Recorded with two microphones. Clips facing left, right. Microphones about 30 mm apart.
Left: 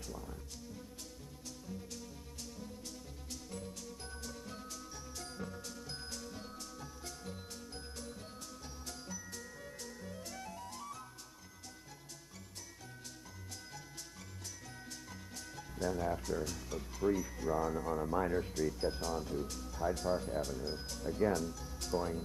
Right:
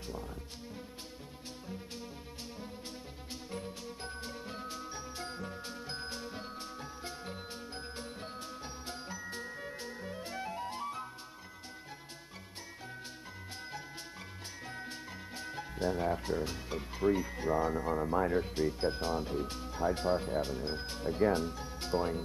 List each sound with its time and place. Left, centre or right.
3.5 s music: right
15.3 s speech: right